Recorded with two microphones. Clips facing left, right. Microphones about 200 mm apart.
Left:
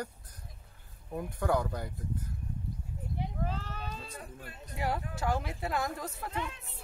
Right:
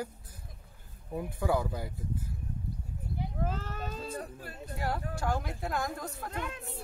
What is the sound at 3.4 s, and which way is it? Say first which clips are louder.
Sheep: right 2 dB; 45° right (ahead or behind).